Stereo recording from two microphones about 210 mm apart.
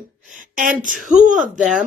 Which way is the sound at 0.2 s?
40° right (ahead or behind).